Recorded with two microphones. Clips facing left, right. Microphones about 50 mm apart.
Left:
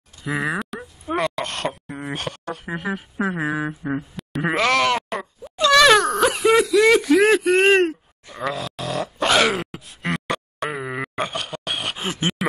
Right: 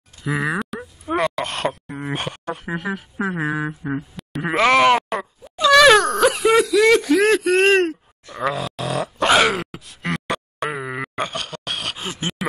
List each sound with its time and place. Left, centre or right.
0.2 s a sound: centre
2.1 s speech: right
2.6 s speech: centre
4.6 s speech: centre
5.6 s speech: centre
8.4 s grunt: centre
11.2 s a sound: centre